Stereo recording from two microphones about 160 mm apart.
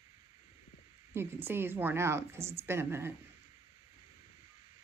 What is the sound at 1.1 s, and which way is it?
A woman's voice, 15° right (ahead or behind).